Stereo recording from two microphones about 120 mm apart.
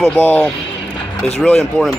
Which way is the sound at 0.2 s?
15° left (ahead or behind).